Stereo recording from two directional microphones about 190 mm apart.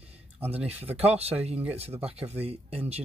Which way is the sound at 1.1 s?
35° right (ahead or behind).